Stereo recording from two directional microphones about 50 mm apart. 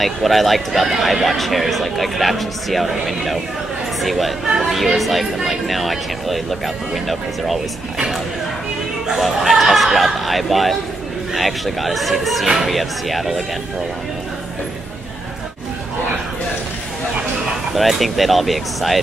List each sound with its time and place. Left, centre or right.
0.0 s speech: centre
9.0 s speech: centre
17.7 s speech: centre